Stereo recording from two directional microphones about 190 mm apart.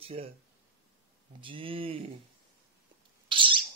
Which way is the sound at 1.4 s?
25° right (ahead or behind).